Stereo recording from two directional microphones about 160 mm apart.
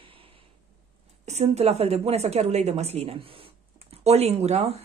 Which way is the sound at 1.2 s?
45° right (ahead or behind).